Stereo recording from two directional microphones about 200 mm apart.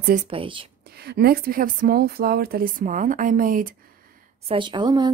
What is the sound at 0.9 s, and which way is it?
Speech, 55° right (ahead or behind).